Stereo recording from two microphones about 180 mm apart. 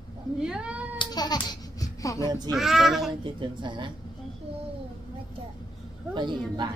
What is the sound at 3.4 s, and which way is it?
Speech, 25° right (ahead or behind).